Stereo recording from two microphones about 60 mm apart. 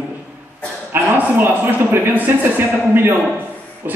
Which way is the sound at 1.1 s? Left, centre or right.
Right.